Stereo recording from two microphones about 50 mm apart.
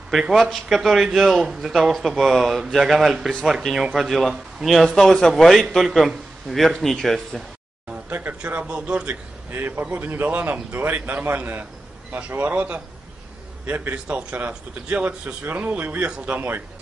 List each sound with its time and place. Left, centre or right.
0.3 s a man's voice: centre
1.7 s a man's voice: centre
4.8 s a man's voice: centre
8.1 s a man's voice: right
8.6 s a man's voice: right
9.5 s a man's voice: right